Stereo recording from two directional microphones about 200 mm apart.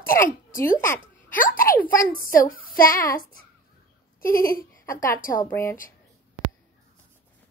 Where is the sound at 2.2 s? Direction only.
45° left (ahead or behind).